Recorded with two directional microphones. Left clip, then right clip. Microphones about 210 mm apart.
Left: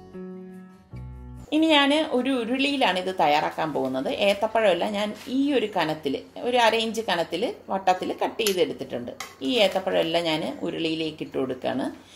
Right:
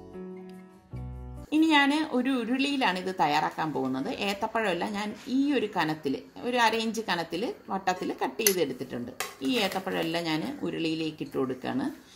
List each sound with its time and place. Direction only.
1.5 s a woman's voice: 55° right (ahead or behind)